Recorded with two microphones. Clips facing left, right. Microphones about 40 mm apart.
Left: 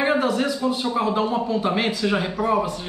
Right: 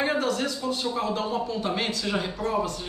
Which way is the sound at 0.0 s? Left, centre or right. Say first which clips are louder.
Left 5 dB; centre.